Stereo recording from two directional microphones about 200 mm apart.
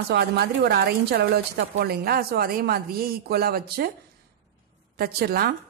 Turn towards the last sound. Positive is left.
turn(degrees=-50)  # may be behind; listen again after turning